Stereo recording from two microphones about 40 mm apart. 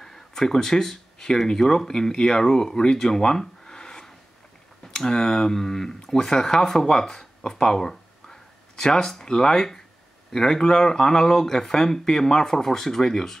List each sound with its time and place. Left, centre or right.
0.0 s speech: centre